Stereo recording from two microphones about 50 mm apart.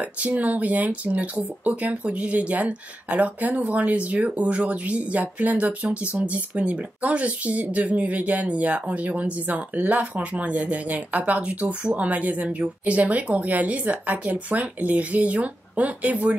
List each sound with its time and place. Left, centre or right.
0.2 s speech: right